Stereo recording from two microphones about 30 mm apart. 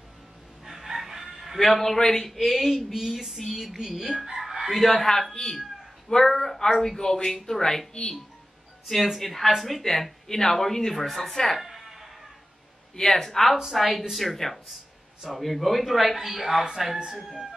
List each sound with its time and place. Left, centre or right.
0.7 s crowing: centre
1.6 s speech: centre
2.3 s speech: centre
2.9 s a sound: centre
3.3 s speech: centre
4.2 s fowl: centre
4.7 s speech: centre
8.8 s speech: centre
11.5 s music: centre
12.9 s speech: centre
13.7 s speech: centre
16.7 s a sound: centre